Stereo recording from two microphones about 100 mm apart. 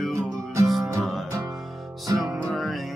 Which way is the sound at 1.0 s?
Centre (ahead or behind).